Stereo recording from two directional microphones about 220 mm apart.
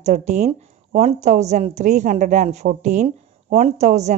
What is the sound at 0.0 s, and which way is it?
A woman's voice, 30° right (ahead or behind).